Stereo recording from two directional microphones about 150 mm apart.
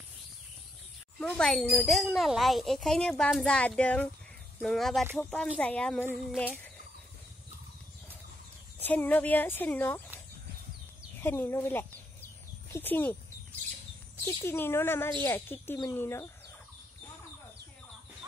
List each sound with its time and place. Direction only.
1.2 s speech: 5° left (ahead or behind)
8.8 s speech: 10° left (ahead or behind)
11.1 s speech: 15° left (ahead or behind)
12.7 s a sound: 15° left (ahead or behind)
14.4 s speech: 15° left (ahead or behind)